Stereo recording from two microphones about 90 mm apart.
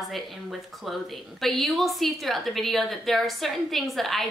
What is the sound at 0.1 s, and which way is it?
Speech, centre (ahead or behind).